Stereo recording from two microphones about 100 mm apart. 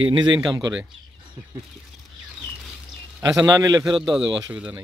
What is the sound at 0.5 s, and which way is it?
Speech, 35° right (ahead or behind).